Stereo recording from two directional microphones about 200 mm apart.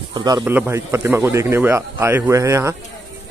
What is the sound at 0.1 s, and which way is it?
A man's voice, 20° right (ahead or behind).